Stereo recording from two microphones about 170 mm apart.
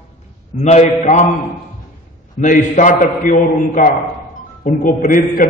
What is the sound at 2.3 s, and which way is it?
A man's voice, 50° left (ahead or behind).